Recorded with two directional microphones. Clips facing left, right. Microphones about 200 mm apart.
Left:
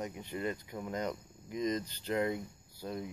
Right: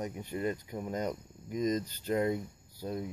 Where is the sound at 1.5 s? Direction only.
40° right (ahead or behind).